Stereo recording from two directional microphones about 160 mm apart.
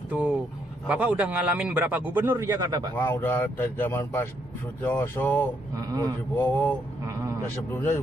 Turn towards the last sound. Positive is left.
turn(degrees=15)  # may be behind; listen again after turning